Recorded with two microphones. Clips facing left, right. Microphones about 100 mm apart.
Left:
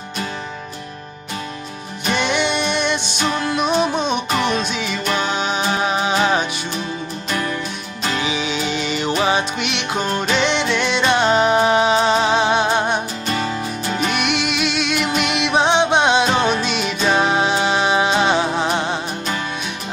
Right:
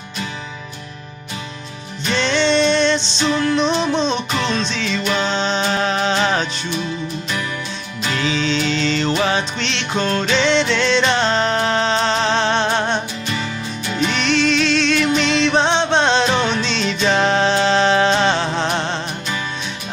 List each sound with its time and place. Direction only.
2.1 s music: 15° left (ahead or behind)
8.1 s music: 15° left (ahead or behind)
13.3 s music: 45° left (ahead or behind)
14.1 s music: 10° left (ahead or behind)